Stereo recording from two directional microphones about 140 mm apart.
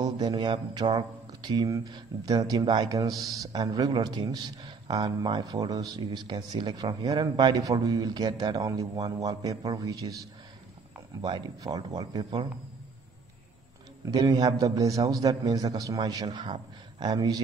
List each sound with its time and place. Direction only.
0.0 s speech: 30° right (ahead or behind)
14.1 s speech: 30° right (ahead or behind)